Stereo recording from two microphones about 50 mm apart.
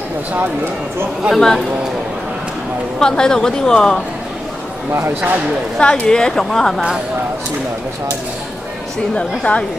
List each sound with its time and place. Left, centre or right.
1.3 s a woman's voice: centre
3.0 s a woman's voice: centre
5.8 s a woman's voice: centre
9.1 s a woman's voice: centre